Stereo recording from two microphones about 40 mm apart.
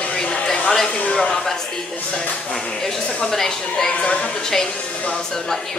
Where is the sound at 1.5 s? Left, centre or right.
Centre.